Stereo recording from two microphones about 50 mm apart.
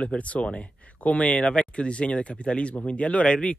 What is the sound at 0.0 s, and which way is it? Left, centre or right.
Speech, left.